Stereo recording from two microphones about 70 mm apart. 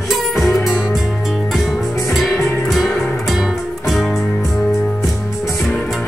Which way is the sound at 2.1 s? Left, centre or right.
Centre.